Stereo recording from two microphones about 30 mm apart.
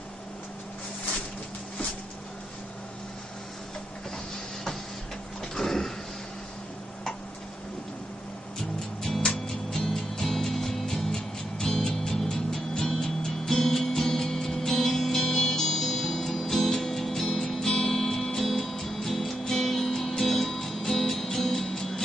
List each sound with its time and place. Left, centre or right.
5.4 s a sound: centre
8.7 s music: centre
11.1 s music: left